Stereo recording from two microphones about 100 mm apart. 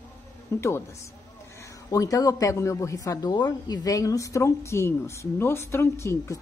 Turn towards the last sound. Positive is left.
turn(degrees=30)  # may be behind; listen again after turning